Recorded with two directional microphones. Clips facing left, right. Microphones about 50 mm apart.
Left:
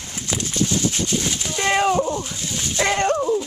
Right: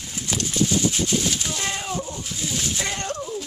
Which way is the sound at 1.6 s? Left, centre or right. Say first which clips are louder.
Left 10 dB; left.